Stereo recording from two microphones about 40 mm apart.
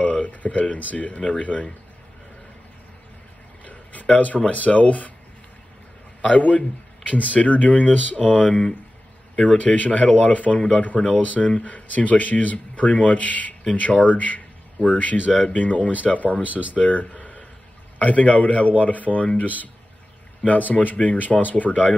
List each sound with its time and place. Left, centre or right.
0.0 s speech: left
3.6 s a sound: left
4.5 s speech: left
6.2 s speech: left
16.4 s speech: right
16.7 s speech: left
20.4 s speech: left